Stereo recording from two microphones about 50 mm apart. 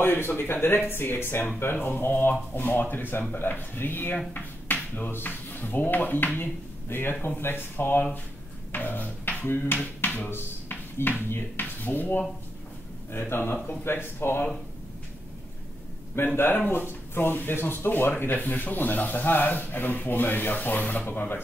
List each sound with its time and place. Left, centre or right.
0.0 s speech: left
10.0 s a sound: left
10.3 s a sound: left
11.2 s speech: left
11.6 s speech: left
16.3 s speech: left